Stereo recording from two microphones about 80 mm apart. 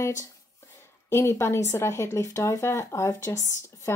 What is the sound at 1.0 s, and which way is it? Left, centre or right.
Speech, left.